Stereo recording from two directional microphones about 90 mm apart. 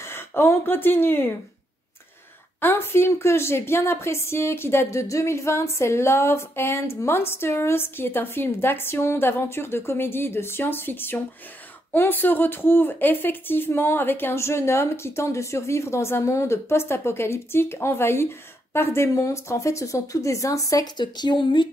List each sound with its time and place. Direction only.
0.1 s speech: 25° left (ahead or behind)
2.6 s speech: 25° left (ahead or behind)
21.0 s speech: 60° left (ahead or behind)